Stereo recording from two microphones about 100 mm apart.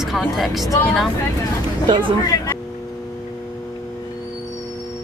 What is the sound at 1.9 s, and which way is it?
Speech, 55° right (ahead or behind).